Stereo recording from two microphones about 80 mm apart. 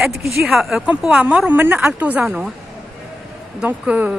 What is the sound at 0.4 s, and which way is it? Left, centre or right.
Speech, centre.